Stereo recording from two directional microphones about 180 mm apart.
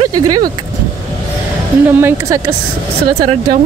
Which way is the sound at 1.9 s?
15° right (ahead or behind).